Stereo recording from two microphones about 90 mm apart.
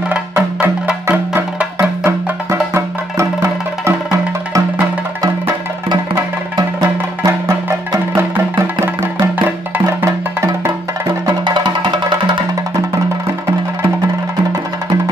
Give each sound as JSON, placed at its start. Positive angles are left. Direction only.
{"t": 0.1, "sound": "music", "side_deg": -15}
{"t": 1.0, "sound": "music", "side_deg": -25}
{"t": 5.9, "sound": "music", "side_deg": -50}
{"t": 8.8, "sound": "music", "side_deg": -30}
{"t": 11.4, "sound": "music", "side_deg": -55}